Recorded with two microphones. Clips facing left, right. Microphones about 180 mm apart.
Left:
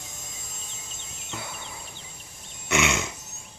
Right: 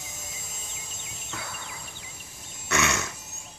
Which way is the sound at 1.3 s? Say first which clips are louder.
Left 2 dB; 15° left (ahead or behind).